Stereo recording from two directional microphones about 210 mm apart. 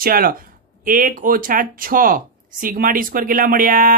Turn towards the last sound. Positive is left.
turn(degrees=-40)  # may be behind; listen again after turning